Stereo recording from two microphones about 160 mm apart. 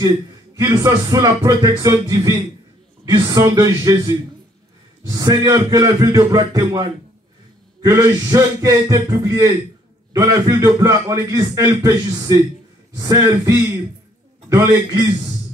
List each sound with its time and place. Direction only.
0.6 s a man's voice: 15° right (ahead or behind)